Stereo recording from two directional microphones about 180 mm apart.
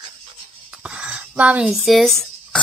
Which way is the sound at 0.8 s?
5° right (ahead or behind).